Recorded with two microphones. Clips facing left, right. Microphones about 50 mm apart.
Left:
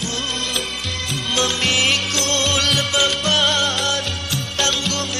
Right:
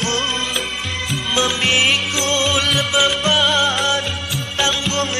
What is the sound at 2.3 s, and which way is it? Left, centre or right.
Music, centre.